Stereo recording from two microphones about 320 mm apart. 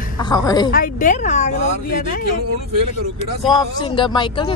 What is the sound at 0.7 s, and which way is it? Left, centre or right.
Speech, left.